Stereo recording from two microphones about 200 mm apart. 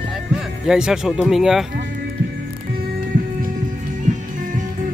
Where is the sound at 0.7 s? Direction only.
5° right (ahead or behind).